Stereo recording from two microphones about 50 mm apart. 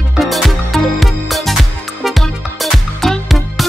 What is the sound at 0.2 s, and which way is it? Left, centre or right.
Music, centre.